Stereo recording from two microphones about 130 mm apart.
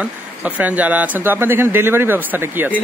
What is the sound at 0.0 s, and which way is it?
Speech, 10° right (ahead or behind).